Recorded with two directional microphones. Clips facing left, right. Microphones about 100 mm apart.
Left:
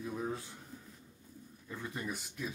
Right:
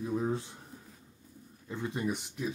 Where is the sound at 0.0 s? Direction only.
25° right (ahead or behind).